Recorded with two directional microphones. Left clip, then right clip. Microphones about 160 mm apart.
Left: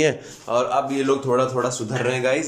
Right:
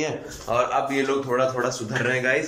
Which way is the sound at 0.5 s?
15° left (ahead or behind).